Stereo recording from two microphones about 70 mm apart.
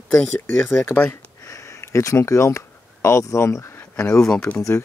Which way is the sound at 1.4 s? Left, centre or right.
Left.